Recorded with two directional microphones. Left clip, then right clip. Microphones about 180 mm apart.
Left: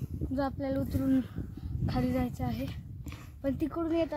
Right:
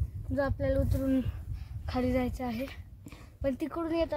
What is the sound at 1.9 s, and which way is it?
A woman's voice, 15° right (ahead or behind).